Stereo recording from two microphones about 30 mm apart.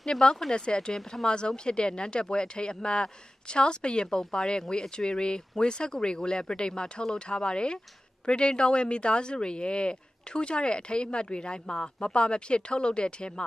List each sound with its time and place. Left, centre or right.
0.5 s speech: left
4.2 s speech: centre